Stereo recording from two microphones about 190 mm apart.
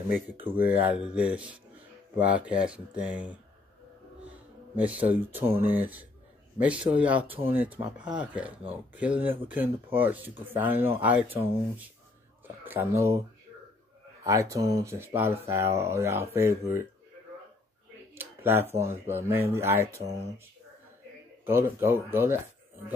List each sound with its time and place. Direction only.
0.1 s speech: 10° right (ahead or behind)
4.7 s speech: 10° right (ahead or behind)
12.4 s speech: 10° right (ahead or behind)
14.2 s speech: 15° right (ahead or behind)
18.1 s a sound: 10° right (ahead or behind)
18.9 s speech: 15° right (ahead or behind)
21.5 s speech: 10° right (ahead or behind)